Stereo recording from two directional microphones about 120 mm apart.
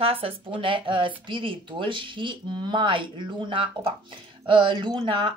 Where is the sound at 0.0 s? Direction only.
50° right (ahead or behind).